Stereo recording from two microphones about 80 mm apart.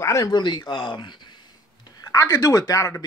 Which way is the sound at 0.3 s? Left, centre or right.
Left.